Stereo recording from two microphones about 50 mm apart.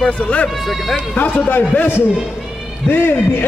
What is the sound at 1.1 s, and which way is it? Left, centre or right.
Speech, left.